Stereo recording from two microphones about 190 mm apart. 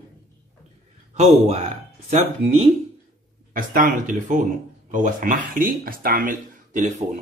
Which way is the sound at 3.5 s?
45° right (ahead or behind).